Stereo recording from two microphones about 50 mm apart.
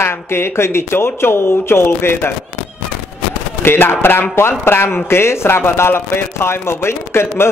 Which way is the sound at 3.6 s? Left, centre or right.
Left.